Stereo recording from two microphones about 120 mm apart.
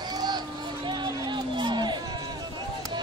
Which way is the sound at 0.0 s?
35° right (ahead or behind).